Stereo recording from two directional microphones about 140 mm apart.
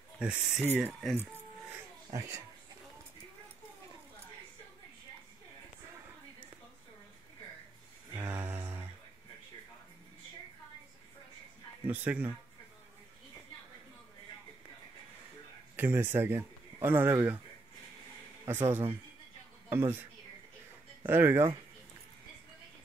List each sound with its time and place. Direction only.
0.2 s speech: 5° right (ahead or behind)
1.1 s music: 15° right (ahead or behind)
2.1 s speech: 20° right (ahead or behind)
8.1 s a sound: 15° right (ahead or behind)
11.8 s speech: 10° right (ahead or behind)
15.7 s speech: 15° right (ahead or behind)
18.5 s speech: 15° right (ahead or behind)